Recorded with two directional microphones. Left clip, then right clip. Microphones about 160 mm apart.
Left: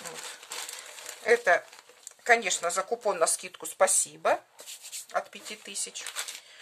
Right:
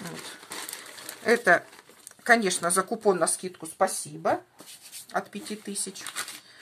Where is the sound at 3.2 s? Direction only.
30° left (ahead or behind).